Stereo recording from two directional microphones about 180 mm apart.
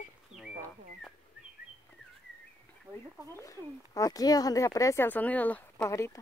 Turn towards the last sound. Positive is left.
turn(degrees=15)  # may be behind; listen again after turning